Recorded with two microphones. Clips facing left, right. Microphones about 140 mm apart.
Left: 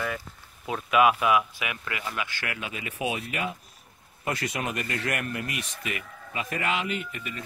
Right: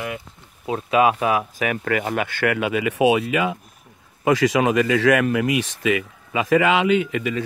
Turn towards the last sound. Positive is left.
turn(degrees=-90)